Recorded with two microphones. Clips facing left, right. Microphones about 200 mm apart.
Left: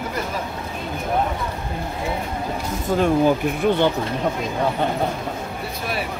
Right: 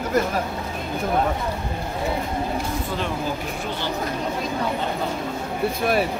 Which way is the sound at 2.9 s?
45° left (ahead or behind).